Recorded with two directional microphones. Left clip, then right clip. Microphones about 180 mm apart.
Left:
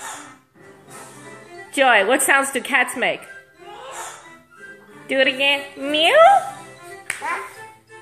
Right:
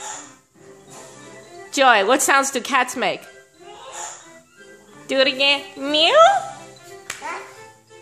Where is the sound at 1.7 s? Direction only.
20° right (ahead or behind).